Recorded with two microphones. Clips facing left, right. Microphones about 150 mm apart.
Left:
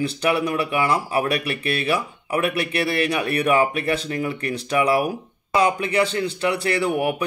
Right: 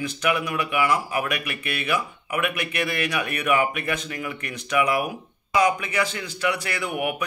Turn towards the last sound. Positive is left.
turn(degrees=30)  # may be behind; listen again after turning